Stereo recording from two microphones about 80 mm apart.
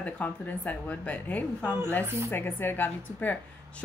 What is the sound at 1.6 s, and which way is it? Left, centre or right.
Speech, right.